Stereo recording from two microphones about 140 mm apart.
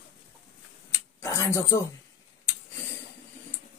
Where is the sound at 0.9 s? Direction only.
20° left (ahead or behind).